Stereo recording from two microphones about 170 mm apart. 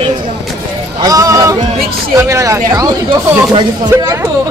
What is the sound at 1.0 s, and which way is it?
Speech, 20° right (ahead or behind).